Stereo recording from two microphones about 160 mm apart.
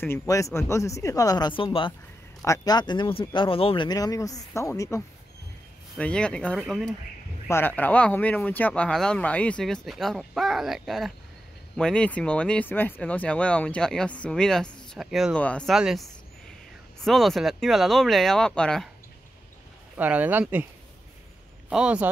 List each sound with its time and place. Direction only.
0.0 s speech: 15° left (ahead or behind); by 1.9 s 35° left (ahead or behind)
2.4 s speech: 20° left (ahead or behind)
5.9 s speech: 5° left (ahead or behind)
7.4 s speech: 15° left (ahead or behind)
20.0 s speech: 10° right (ahead or behind)
21.6 s speech: 5° right (ahead or behind)